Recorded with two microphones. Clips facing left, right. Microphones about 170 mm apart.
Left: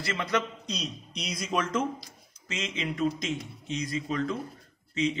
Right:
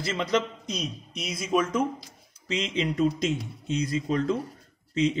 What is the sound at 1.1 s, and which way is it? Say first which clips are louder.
Speech: right 5 dB; 5° right (ahead or behind).